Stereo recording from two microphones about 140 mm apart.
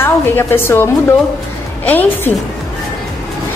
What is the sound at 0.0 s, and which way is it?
A woman's voice, 15° left (ahead or behind).